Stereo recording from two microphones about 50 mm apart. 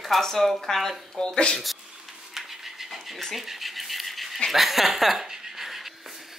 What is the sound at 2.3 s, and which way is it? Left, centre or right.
Scratch, centre.